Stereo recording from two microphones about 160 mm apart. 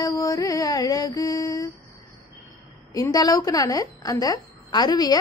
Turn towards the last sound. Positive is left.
turn(degrees=25)  # may be behind; listen again after turning